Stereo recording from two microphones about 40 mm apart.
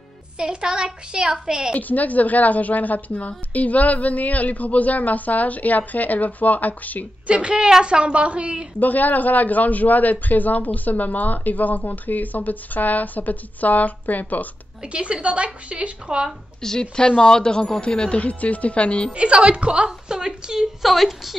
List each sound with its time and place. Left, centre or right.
0.4 s a woman's voice: right
1.7 s a woman's voice: left
7.2 s a woman's voice: right
8.7 s speech: left
14.8 s a woman's voice: right
16.6 s speech: centre; by 19.0 s left
19.1 s a woman's voice: right
19.9 s a woman's voice: centre
20.8 s a woman's voice: centre